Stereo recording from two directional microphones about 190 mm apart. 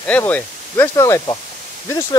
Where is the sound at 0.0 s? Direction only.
10° left (ahead or behind).